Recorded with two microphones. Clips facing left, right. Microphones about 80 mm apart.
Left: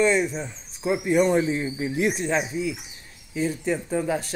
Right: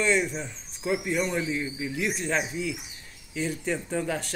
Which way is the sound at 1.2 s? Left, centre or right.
Left.